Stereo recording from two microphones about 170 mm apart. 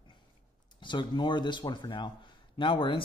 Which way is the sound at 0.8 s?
25° left (ahead or behind).